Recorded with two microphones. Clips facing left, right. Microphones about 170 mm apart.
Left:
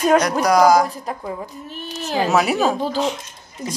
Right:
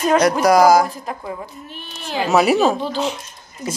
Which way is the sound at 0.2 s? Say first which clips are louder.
Right 2 dB; 5° right (ahead or behind).